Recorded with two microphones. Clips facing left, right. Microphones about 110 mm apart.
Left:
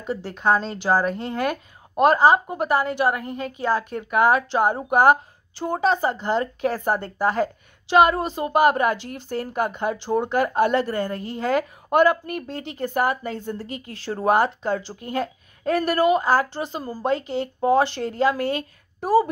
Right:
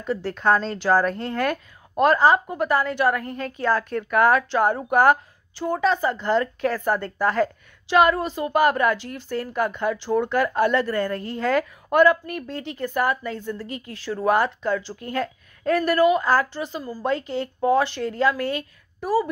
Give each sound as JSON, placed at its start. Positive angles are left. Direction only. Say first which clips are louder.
{"t": 0.0, "sound": "speech", "louder": "right 1 dB", "side_deg": 15}
{"t": 13.4, "sound": "speech", "louder": "even", "side_deg": 40}
{"t": 14.2, "sound": "speech", "louder": "left 1 dB", "side_deg": 25}